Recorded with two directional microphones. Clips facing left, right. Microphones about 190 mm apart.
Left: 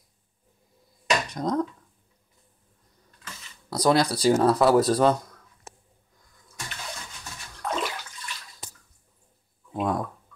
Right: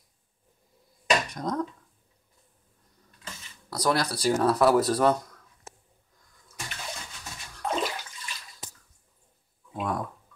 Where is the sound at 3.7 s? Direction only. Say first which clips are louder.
Left 5 dB; 20° left (ahead or behind).